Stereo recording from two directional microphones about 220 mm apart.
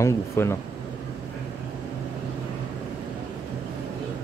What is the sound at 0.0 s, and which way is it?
Speech, 10° left (ahead or behind).